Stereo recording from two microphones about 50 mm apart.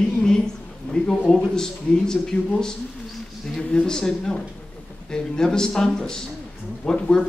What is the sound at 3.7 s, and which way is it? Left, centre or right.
Speech, centre.